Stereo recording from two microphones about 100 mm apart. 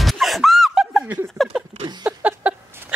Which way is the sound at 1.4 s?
Centre (ahead or behind).